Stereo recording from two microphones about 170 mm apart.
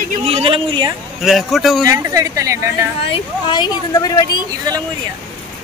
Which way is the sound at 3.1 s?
25° left (ahead or behind).